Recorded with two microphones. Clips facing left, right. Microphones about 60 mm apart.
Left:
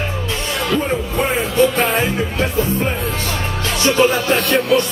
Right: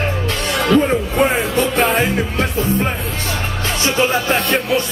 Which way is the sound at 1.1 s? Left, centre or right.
Right.